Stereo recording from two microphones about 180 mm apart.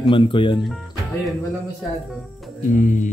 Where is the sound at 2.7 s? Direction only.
45° left (ahead or behind).